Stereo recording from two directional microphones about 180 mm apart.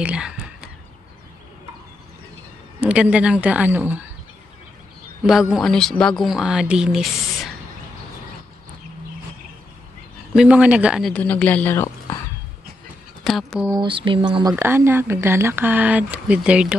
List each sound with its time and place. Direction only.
0.0 s whispering: 5° right (ahead or behind)
2.8 s speech: 5° right (ahead or behind)
5.2 s speech: centre (ahead or behind)
10.3 s speech: 5° right (ahead or behind); by 12.2 s 15° left (ahead or behind)
13.3 s speech: centre (ahead or behind)
13.7 s speech: 25° right (ahead or behind)
14.5 s speech: 10° right (ahead or behind)